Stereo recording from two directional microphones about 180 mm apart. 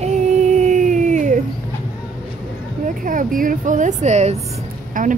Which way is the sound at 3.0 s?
50° right (ahead or behind).